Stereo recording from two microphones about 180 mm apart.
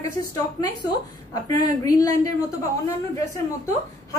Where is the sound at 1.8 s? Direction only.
20° left (ahead or behind).